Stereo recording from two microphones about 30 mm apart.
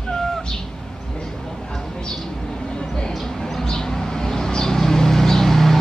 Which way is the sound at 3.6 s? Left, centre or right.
Centre.